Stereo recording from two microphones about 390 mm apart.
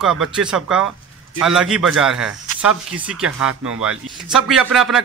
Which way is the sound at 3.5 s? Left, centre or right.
Right.